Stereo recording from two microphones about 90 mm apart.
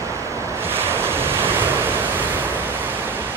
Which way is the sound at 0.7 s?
25° right (ahead or behind).